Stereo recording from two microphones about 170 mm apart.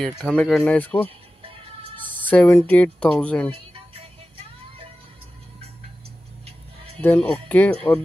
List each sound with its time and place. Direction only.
0.0 s speech: 5° left (ahead or behind)
1.4 s music: 30° right (ahead or behind)
2.2 s speech: 10° left (ahead or behind)
3.5 s music: 35° right (ahead or behind)
6.4 s music: 35° right (ahead or behind)
7.0 s speech: 10° left (ahead or behind)